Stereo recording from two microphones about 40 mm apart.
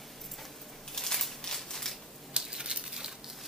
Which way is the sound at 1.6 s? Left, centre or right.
Centre.